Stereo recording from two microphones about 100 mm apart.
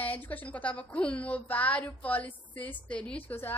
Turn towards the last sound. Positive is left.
turn(degrees=20)  # may be behind; listen again after turning